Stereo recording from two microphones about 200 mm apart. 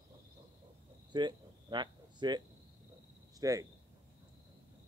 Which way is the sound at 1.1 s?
20° right (ahead or behind).